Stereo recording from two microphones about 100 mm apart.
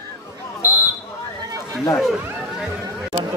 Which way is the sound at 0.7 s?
15° right (ahead or behind).